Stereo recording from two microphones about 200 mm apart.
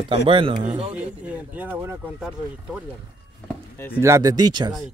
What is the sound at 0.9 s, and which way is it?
Speech, 5° right (ahead or behind).